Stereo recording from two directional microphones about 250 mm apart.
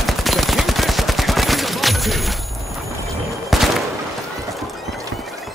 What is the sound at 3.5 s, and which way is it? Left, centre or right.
Gunshot, centre.